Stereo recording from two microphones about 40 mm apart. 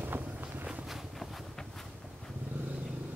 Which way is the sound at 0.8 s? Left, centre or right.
Centre.